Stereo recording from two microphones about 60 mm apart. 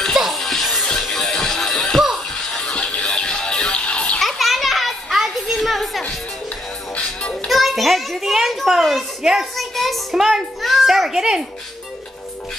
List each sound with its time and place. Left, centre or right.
0.0 s music: centre
4.2 s children playing: centre
7.4 s a sound: centre